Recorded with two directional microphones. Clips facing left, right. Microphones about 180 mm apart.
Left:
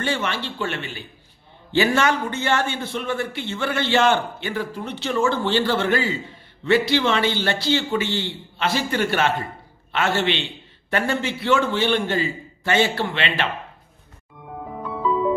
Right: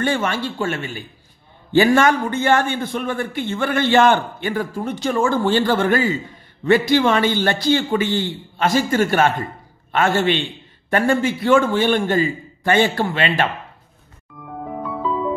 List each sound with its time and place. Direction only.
0.0 s a man's voice: 50° right (ahead or behind)